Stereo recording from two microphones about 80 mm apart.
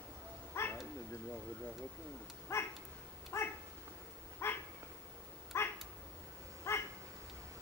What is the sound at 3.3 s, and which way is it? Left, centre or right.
Dog, left.